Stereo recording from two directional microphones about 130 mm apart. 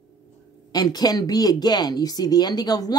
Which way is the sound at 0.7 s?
30° left (ahead or behind).